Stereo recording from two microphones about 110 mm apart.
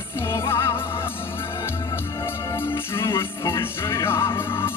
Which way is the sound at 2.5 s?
20° left (ahead or behind).